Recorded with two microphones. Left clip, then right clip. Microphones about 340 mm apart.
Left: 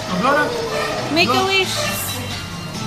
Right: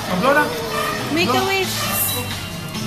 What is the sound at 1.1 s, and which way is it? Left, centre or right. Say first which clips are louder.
Speech: left 3 dB; centre.